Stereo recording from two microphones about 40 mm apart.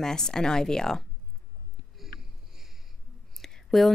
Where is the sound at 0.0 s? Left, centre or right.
Centre.